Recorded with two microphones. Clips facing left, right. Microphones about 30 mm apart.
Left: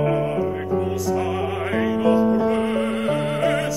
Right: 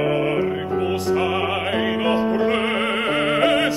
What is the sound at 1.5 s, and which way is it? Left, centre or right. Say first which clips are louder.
Music: right 1 dB; right.